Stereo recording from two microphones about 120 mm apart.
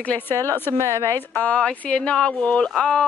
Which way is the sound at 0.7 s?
25° right (ahead or behind).